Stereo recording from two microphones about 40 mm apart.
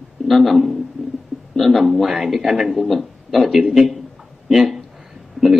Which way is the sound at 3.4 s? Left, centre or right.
Centre.